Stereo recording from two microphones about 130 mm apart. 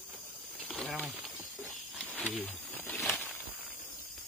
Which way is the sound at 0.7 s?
Centre (ahead or behind).